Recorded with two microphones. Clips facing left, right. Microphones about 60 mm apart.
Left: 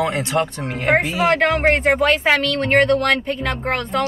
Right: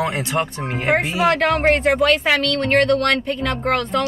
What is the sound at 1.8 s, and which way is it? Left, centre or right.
A woman's voice, left.